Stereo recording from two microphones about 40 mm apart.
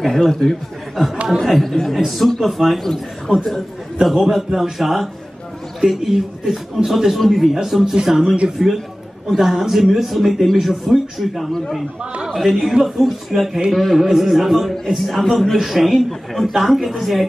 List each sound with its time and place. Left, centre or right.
0.0 s speech: centre
3.3 s speech: centre